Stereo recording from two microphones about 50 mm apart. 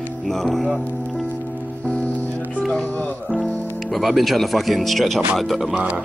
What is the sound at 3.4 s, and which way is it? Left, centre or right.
Speech, centre.